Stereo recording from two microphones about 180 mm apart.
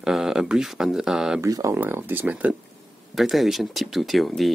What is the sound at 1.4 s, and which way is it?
Speech, 15° right (ahead or behind).